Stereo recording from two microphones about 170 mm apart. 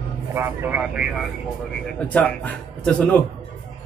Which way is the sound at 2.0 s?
5° left (ahead or behind).